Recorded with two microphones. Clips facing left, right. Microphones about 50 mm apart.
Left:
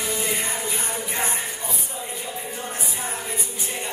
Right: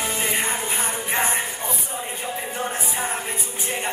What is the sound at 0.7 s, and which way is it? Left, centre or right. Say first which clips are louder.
Music: right 4 dB; right.